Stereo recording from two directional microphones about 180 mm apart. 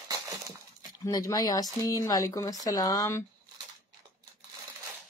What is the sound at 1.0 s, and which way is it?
Speech, 20° left (ahead or behind).